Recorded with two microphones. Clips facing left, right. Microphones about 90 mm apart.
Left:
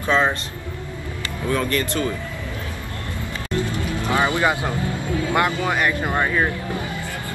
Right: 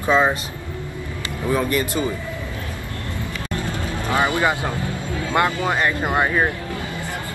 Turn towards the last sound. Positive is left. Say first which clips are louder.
# left 2 dB
turn(degrees=20)  # may be behind; listen again after turning